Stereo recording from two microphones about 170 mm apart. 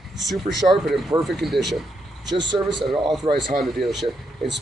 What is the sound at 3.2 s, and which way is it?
Speech, 45° right (ahead or behind).